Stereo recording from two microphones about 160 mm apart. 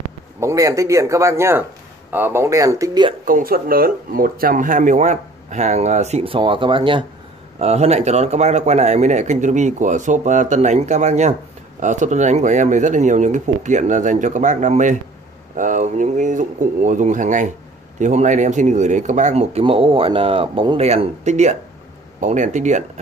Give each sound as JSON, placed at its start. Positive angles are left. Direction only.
{"t": 0.4, "sound": "speech", "side_deg": -20}
{"t": 3.3, "sound": "speech", "side_deg": -65}
{"t": 7.5, "sound": "speech", "side_deg": -40}